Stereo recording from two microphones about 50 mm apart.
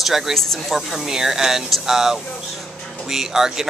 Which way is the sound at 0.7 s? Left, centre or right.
Centre.